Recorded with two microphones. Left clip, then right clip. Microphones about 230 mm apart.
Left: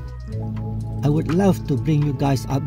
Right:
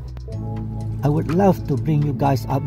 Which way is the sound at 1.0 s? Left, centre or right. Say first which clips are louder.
Even; centre.